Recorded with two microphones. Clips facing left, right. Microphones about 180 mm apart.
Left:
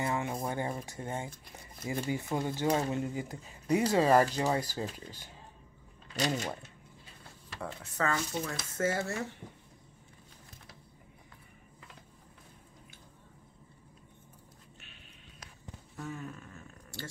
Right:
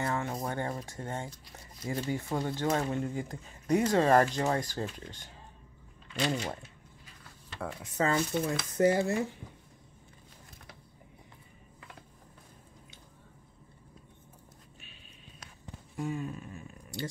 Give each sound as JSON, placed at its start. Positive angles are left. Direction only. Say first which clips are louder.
{"t": 0.0, "sound": "speech", "louder": "even", "side_deg": 10}
{"t": 6.0, "sound": "speech", "louder": "right 1 dB", "side_deg": 40}
{"t": 7.8, "sound": "speech", "louder": "right 3 dB", "side_deg": -15}
{"t": 8.3, "sound": "speech", "louder": "right 5 dB", "side_deg": -60}
{"t": 8.6, "sound": "speech", "louder": "right 7 dB", "side_deg": -15}
{"t": 16.0, "sound": "a sound", "louder": "right 6 dB", "side_deg": -15}